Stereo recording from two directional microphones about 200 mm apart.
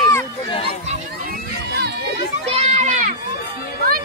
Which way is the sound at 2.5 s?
35° right (ahead or behind).